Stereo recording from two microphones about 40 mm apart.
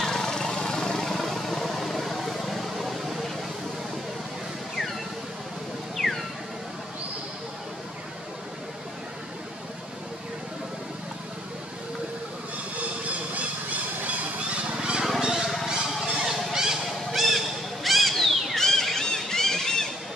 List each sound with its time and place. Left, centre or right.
0.0 s vehicle: centre
6.0 s music: centre
12.7 s vehicle: right
14.8 s a sound: right
16.0 s honk: centre
17.8 s a sound: centre